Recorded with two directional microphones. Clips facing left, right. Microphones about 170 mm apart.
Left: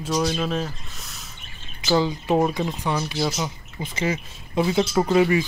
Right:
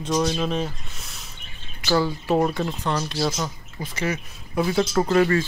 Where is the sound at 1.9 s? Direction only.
20° left (ahead or behind).